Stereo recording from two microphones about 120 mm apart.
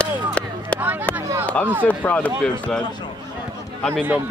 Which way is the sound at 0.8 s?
15° right (ahead or behind).